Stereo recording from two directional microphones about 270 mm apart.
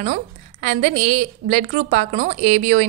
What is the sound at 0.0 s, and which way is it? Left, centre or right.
A woman's voice, right.